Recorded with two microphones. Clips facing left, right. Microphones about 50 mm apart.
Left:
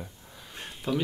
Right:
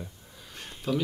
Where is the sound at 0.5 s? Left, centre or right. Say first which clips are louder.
Even; centre.